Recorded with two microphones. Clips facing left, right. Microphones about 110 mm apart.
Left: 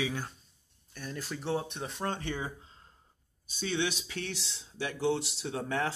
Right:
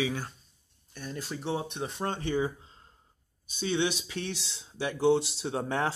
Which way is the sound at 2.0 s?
30° right (ahead or behind).